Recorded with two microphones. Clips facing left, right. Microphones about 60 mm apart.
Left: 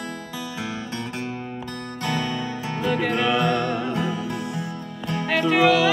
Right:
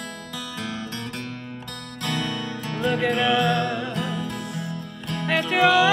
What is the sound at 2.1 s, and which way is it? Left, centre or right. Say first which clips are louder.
Music: left 1 dB; centre.